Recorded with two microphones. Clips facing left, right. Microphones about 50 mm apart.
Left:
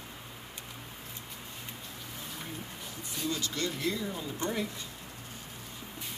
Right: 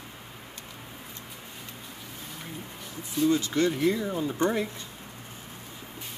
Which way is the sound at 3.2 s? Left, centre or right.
Right.